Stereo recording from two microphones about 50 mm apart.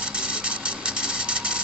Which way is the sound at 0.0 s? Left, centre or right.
Centre.